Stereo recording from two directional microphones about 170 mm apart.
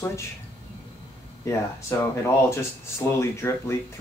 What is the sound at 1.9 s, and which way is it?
Speech, 15° left (ahead or behind).